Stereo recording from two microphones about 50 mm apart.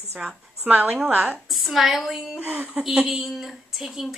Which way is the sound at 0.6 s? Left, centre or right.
Right.